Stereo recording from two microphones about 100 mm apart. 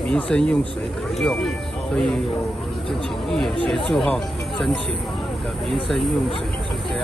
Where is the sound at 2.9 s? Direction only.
5° left (ahead or behind).